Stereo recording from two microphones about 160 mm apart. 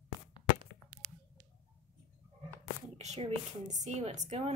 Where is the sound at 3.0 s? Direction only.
40° right (ahead or behind).